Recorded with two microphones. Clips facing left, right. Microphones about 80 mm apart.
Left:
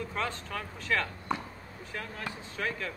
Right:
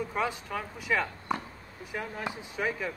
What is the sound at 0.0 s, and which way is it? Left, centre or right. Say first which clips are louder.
Speech: right 3 dB; centre.